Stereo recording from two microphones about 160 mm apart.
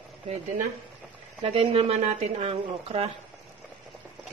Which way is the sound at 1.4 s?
35° right (ahead or behind).